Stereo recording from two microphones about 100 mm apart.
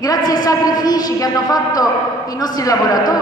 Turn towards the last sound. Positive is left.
turn(degrees=40)  # may be behind; listen again after turning